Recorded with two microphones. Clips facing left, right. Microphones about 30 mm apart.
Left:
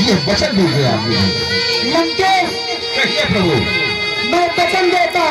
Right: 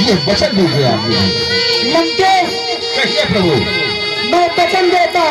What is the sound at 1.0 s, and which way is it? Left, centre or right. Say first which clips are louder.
Speech: right 2 dB; right.